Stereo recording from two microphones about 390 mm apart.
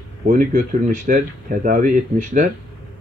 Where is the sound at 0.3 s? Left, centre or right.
Centre.